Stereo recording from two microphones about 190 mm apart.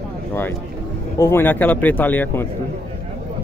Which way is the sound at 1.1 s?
15° left (ahead or behind).